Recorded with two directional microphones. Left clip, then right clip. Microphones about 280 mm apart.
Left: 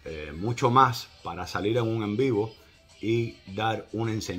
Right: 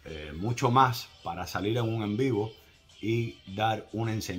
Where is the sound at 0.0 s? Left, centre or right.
Centre.